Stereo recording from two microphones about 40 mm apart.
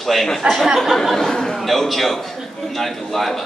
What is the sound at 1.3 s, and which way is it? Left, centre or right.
Speech, centre.